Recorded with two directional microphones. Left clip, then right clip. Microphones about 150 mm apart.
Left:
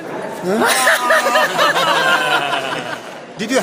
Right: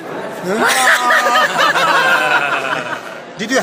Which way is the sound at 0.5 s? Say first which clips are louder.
Right 2 dB; 45° left (ahead or behind).